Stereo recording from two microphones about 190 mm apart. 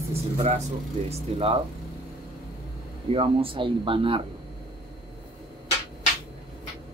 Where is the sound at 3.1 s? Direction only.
30° right (ahead or behind).